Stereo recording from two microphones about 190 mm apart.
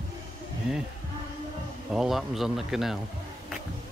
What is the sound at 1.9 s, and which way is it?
Speech, centre (ahead or behind).